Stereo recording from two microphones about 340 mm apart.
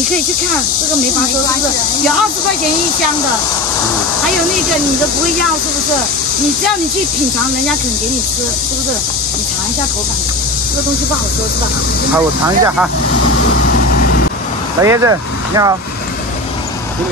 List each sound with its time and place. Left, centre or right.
12.4 s speech: centre
13.3 s vehicle: left
13.7 s vehicle: left
14.8 s speech: centre